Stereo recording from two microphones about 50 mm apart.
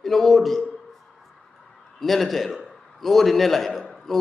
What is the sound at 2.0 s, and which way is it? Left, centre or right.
A man's voice, centre.